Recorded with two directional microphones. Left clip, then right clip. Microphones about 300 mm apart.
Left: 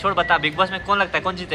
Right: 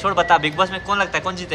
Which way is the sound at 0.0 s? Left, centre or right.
Centre.